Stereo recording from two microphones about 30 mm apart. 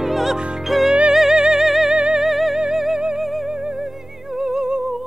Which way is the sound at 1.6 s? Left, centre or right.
Centre.